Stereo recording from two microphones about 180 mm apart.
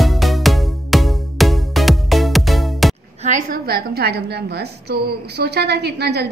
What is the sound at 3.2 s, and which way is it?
A woman's voice, 50° right (ahead or behind).